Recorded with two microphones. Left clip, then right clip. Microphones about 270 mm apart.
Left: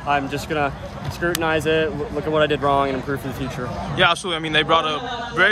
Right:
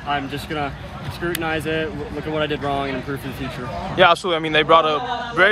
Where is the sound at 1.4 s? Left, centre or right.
Left.